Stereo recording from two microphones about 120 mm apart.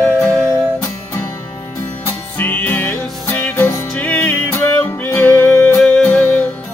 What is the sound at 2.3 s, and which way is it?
Music, 15° left (ahead or behind).